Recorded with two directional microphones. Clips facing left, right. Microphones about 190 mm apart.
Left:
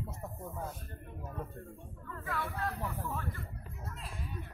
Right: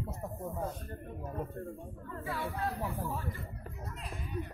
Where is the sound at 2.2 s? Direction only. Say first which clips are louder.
Right 1 dB; 15° right (ahead or behind).